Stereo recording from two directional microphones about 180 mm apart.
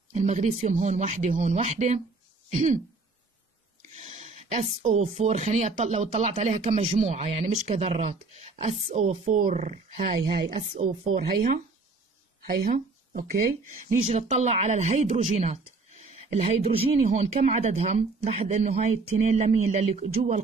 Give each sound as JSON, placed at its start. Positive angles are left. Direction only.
{"t": 0.1, "sound": "speech", "side_deg": -40}
{"t": 3.9, "sound": "speech", "side_deg": -35}
{"t": 11.1, "sound": "speech", "side_deg": -50}
{"t": 13.1, "sound": "speech", "side_deg": -50}